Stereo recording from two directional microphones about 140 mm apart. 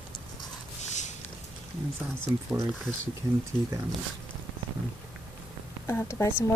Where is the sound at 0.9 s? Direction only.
60° left (ahead or behind).